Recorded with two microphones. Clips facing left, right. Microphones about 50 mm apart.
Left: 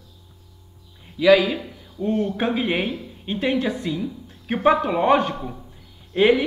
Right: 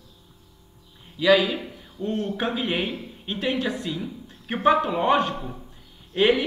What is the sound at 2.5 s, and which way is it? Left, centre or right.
Speech, left.